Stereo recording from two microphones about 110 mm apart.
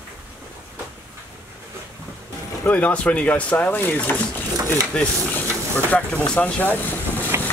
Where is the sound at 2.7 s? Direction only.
10° left (ahead or behind).